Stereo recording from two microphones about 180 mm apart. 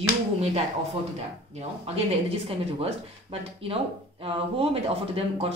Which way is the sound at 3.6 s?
30° right (ahead or behind).